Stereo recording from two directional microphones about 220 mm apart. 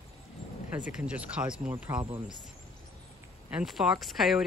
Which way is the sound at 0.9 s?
5° right (ahead or behind).